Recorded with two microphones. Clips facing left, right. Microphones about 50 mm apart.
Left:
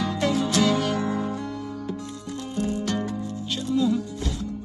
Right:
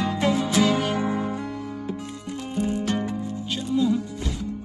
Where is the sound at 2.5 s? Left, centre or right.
Right.